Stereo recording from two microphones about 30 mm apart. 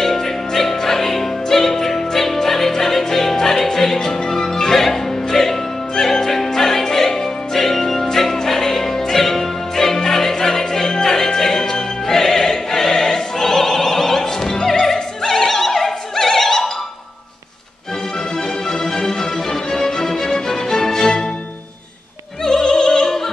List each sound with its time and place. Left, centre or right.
0.0 s music: centre
18.7 s music: centre
22.4 s opera: centre